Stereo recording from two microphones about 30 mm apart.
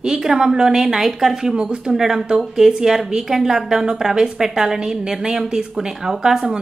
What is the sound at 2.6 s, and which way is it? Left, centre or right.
A woman's voice, centre.